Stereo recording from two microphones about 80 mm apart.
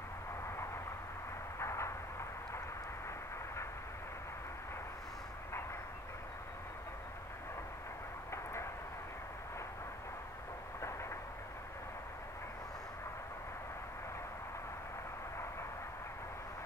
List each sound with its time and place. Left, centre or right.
1.6 s vehicle: left